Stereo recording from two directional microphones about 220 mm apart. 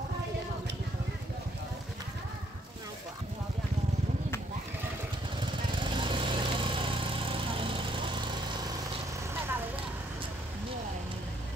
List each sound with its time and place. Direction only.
5.4 s vehicle: 20° right (ahead or behind)